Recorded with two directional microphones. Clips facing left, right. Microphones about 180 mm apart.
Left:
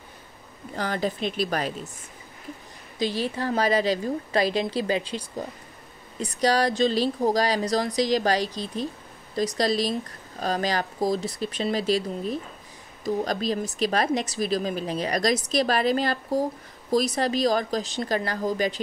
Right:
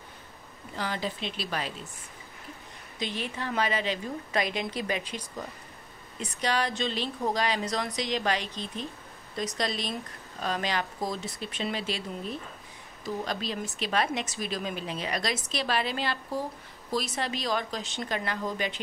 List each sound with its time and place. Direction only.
0.7 s speech: 45° left (ahead or behind)
3.0 s speech: 35° left (ahead or behind)